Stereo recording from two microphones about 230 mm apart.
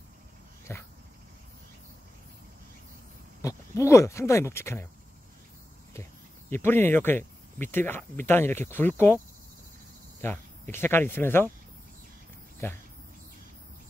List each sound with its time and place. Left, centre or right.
0.7 s speech: centre
3.4 s speech: centre
6.5 s speech: centre
10.2 s speech: centre
12.6 s speech: centre